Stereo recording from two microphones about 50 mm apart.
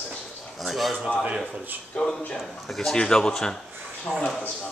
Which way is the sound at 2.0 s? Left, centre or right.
Centre.